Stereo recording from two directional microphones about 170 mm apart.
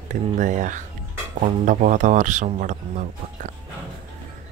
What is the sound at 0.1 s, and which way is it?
Speech, 45° right (ahead or behind).